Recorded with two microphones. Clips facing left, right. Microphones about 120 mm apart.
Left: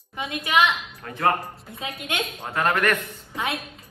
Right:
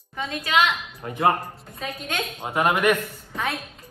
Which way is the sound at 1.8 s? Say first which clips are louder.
Right 1 dB; 20° left (ahead or behind).